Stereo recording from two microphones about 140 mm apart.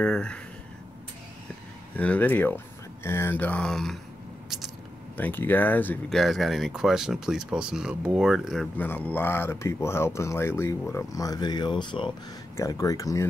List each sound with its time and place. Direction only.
0.0 s speech: 5° left (ahead or behind)
2.0 s speech: 10° left (ahead or behind)
5.1 s speech: 15° left (ahead or behind)
6.0 s speech: centre (ahead or behind)
8.7 s speech: 15° left (ahead or behind)